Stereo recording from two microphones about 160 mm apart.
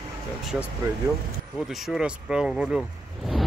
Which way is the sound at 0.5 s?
5° right (ahead or behind).